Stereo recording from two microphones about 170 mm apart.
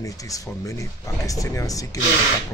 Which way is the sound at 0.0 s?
20° left (ahead or behind).